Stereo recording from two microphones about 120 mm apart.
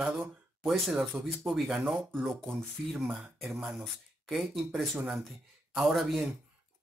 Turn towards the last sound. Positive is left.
turn(degrees=0)  # may be behind; listen again after turning